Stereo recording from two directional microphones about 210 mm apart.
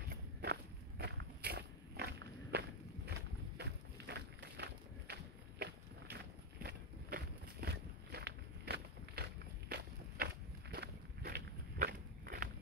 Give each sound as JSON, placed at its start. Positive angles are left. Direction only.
{"t": 0.1, "sound": "walk", "side_deg": -50}
{"t": 6.6, "sound": "walk", "side_deg": -50}